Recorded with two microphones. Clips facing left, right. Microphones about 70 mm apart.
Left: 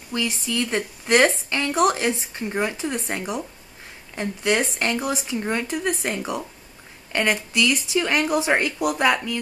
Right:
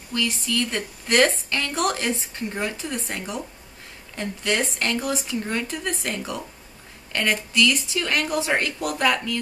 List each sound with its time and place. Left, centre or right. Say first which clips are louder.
0.1 s a woman's voice: even; centre